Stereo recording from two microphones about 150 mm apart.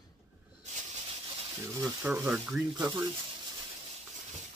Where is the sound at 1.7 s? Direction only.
20° right (ahead or behind).